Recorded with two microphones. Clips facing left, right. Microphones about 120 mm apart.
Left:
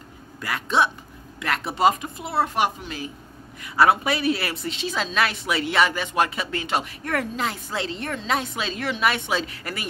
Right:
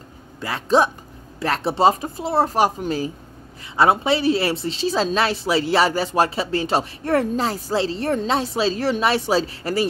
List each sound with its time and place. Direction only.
0.4 s a woman's voice: 30° right (ahead or behind)